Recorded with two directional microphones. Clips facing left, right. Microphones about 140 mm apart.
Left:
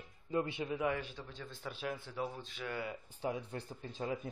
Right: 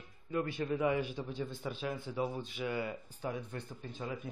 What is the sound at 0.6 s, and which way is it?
Speech, centre (ahead or behind).